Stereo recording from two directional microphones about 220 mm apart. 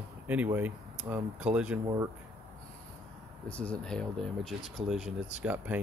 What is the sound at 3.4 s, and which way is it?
Speech, 5° left (ahead or behind).